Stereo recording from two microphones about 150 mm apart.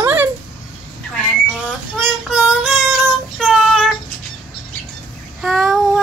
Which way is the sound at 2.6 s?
Centre (ahead or behind).